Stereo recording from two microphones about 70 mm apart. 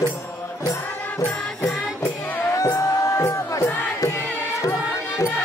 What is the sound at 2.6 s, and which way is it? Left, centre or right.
Music, left.